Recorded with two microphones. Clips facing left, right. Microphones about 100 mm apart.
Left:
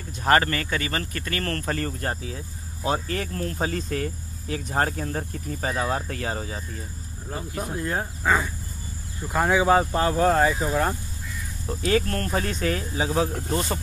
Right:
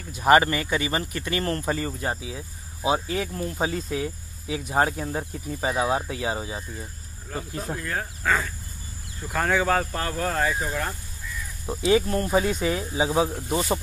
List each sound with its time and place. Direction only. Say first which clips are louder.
0.1 s speech: right 3 dB; 10° right (ahead or behind)
7.2 s speech: even; 25° left (ahead or behind)
11.9 s speech: right 3 dB; 15° right (ahead or behind)